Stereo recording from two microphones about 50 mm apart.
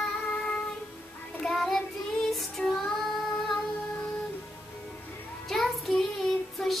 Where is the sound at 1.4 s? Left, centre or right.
Centre.